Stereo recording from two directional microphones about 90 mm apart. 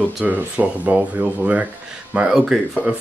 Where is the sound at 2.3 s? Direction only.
5° right (ahead or behind).